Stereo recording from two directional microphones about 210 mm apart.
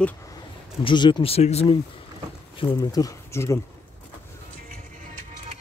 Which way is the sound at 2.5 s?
15° left (ahead or behind).